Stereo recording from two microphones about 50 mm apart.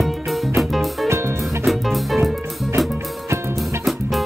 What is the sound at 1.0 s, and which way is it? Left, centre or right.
Music, right.